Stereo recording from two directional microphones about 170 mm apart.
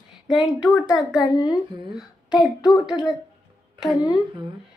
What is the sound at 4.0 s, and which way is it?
Speech, 25° left (ahead or behind).